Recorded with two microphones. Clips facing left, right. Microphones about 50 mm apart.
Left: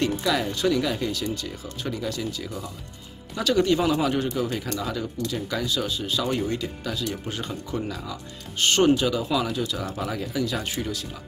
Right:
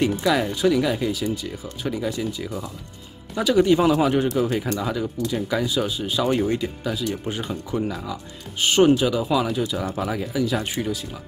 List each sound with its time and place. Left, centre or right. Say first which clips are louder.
0.1 s speech: right 3 dB; centre